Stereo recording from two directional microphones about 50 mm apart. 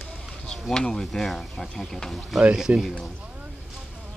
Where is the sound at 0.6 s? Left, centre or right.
Centre.